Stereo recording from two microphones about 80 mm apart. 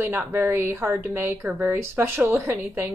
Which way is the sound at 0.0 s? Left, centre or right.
Right.